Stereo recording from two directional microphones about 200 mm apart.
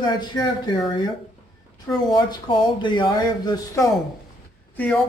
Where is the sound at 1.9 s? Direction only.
20° left (ahead or behind).